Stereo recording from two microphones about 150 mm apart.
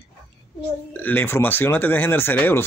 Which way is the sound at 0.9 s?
10° left (ahead or behind).